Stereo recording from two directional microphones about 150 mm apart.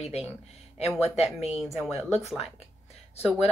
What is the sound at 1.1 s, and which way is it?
Speech, 45° left (ahead or behind).